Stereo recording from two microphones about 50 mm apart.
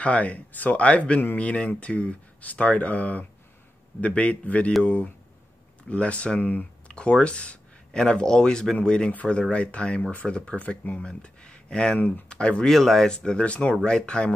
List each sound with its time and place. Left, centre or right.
0.0 s speech: left
6.4 s speech: left
6.9 s speech: centre
11.0 s speech: centre
12.6 s speech: centre
13.1 s speech: centre